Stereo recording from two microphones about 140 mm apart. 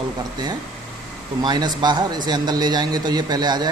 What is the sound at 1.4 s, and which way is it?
Speech, 30° right (ahead or behind).